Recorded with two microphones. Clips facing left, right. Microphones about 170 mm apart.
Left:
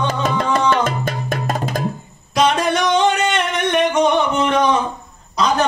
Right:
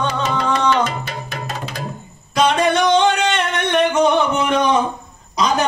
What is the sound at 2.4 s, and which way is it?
Music, centre (ahead or behind).